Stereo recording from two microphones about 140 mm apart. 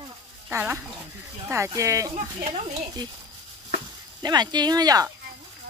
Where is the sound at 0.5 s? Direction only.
15° right (ahead or behind).